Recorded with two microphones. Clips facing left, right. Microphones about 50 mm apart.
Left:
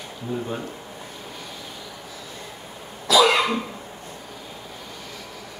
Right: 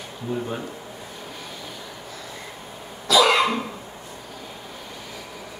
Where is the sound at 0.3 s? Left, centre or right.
Centre.